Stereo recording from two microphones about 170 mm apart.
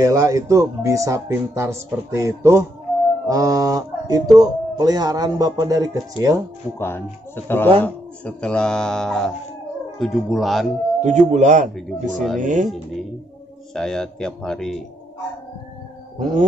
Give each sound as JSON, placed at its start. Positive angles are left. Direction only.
{"t": 0.0, "sound": "speech", "side_deg": -20}
{"t": 6.8, "sound": "speech", "side_deg": 15}
{"t": 11.0, "sound": "speech", "side_deg": -45}
{"t": 11.7, "sound": "speech", "side_deg": 0}
{"t": 12.4, "sound": "speech", "side_deg": -50}
{"t": 13.7, "sound": "speech", "side_deg": 5}